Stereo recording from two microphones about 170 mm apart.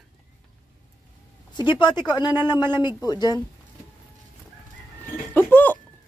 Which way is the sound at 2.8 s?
25° left (ahead or behind).